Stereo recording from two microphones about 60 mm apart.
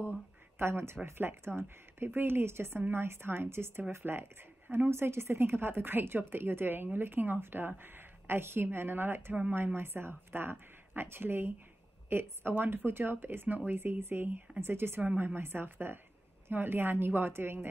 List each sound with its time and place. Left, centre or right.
0.6 s speech: right